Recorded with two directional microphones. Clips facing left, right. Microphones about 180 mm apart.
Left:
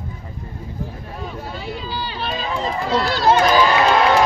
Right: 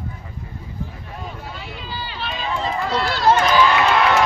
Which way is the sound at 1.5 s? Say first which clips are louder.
Left 5 dB; 40° left (ahead or behind).